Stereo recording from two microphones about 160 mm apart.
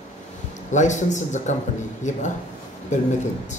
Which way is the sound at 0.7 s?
50° left (ahead or behind).